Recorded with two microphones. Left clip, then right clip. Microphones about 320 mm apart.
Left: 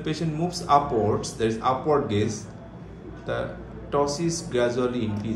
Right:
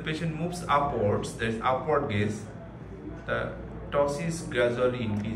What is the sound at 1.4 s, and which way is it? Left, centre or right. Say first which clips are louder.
Speech: left 4 dB; centre.